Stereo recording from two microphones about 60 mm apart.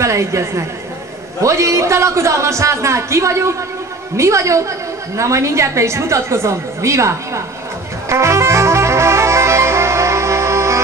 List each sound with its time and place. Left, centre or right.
0.0 s a woman's voice: right
8.1 s saxophone: right